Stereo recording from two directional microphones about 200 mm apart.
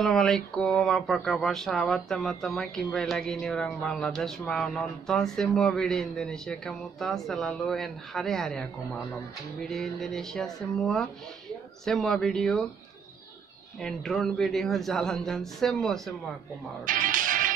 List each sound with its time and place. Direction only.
0.0 s speech: centre (ahead or behind)
13.7 s speech: centre (ahead or behind)
16.8 s music: 40° right (ahead or behind)